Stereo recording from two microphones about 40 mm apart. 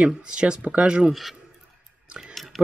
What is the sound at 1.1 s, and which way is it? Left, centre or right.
Speech, centre.